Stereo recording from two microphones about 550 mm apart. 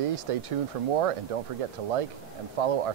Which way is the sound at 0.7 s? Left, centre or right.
Right.